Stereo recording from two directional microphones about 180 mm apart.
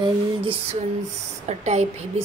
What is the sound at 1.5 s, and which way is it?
Speech, 40° right (ahead or behind).